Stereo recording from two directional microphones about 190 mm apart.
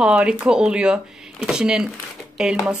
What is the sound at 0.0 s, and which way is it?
Speech, 5° right (ahead or behind).